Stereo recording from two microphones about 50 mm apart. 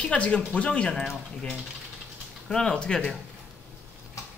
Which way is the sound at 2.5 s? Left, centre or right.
Centre.